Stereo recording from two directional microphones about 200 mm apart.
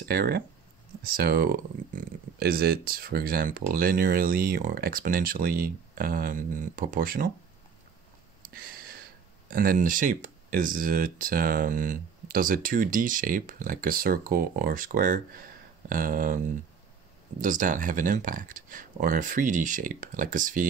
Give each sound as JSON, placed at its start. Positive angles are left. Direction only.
{"t": 0.1, "sound": "speech", "side_deg": -50}
{"t": 8.5, "sound": "a sound", "side_deg": -45}
{"t": 9.5, "sound": "speech", "side_deg": -45}